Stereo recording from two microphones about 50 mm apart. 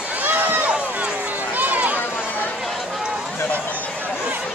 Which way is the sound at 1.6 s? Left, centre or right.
Right.